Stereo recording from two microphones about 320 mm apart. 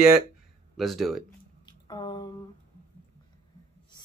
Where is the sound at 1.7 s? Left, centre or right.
Centre.